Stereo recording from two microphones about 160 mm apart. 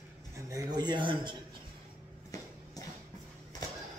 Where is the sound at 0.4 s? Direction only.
20° right (ahead or behind).